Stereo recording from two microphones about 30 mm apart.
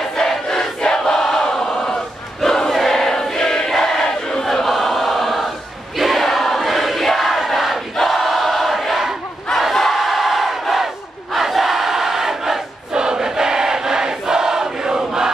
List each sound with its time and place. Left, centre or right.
0.1 s crowd: left
2.7 s choir: centre
3.7 s a sound: centre
4.6 s choir: centre
5.9 s crowd: centre
7.3 s battle cry: centre
8.0 s choir: centre
9.8 s crowd: centre
12.9 s choir: right